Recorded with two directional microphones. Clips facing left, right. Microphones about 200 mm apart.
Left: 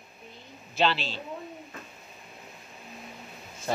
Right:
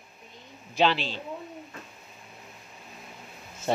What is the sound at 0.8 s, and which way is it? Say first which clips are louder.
Speech: right 2 dB; 15° right (ahead or behind).